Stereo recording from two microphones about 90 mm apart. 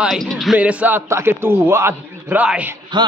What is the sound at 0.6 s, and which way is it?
Music, 15° right (ahead or behind).